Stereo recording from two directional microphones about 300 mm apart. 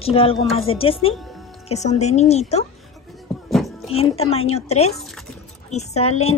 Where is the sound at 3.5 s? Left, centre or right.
Centre.